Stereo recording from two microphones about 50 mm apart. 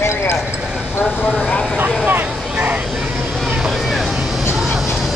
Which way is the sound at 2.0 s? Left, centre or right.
Right.